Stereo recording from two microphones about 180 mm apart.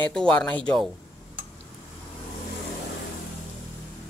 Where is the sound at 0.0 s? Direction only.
5° left (ahead or behind).